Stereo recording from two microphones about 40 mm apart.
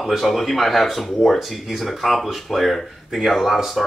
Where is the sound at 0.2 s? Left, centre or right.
Centre.